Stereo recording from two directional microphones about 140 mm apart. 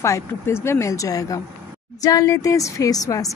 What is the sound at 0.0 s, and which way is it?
A woman's voice, 20° left (ahead or behind).